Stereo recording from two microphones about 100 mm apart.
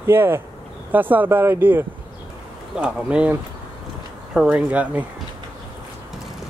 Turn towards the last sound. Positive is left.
turn(degrees=-15)  # may be behind; listen again after turning